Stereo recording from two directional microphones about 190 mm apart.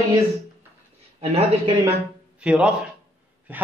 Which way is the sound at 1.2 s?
35° right (ahead or behind).